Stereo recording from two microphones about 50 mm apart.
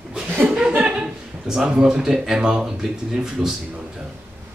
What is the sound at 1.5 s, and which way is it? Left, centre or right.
Speech, centre.